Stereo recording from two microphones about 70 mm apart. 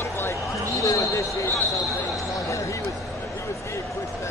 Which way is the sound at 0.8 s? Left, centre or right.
Left.